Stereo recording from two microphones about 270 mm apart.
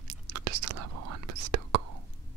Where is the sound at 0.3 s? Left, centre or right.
Right.